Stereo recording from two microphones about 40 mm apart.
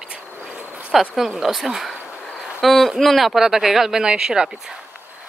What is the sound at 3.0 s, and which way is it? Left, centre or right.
Speech, centre.